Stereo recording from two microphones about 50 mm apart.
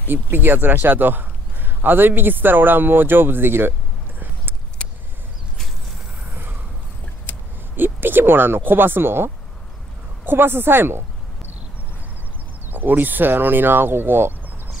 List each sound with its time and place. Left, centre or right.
0.1 s a man's voice: right
6.3 s a sound: right
7.7 s a woman's voice: right
12.7 s a man's voice: right